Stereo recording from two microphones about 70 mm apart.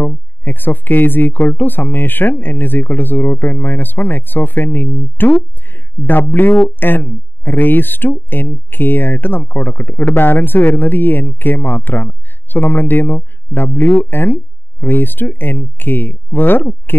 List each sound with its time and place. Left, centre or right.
0.0 s speech: left